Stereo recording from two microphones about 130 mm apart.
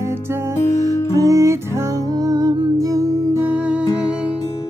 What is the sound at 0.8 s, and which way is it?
Music, 25° right (ahead or behind).